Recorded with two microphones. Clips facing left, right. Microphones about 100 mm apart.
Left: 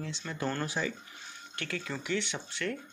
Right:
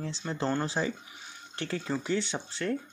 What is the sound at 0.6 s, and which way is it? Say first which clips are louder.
Speech: right 3 dB; 30° right (ahead or behind).